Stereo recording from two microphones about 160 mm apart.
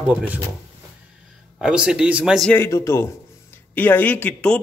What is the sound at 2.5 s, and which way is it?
A man's voice, 15° left (ahead or behind).